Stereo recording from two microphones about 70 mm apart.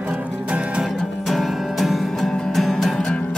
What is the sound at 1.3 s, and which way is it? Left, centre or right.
Music, centre.